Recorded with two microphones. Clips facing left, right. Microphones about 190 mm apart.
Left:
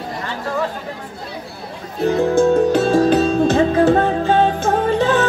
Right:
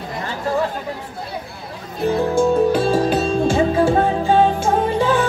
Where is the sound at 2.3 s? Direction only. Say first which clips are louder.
Left 2 dB; 10° right (ahead or behind).